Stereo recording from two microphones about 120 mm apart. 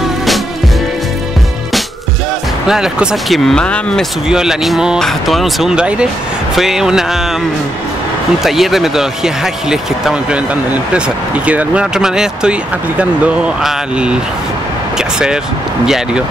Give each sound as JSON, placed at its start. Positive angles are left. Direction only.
{"t": 2.7, "sound": "speech", "side_deg": -5}
{"t": 4.3, "sound": "speech", "side_deg": -5}
{"t": 8.5, "sound": "speech", "side_deg": 0}